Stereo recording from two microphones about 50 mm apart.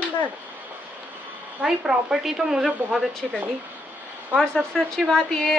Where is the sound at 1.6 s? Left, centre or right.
Centre.